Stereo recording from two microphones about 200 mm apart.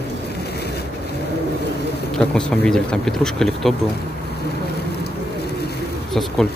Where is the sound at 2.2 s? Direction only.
5° left (ahead or behind).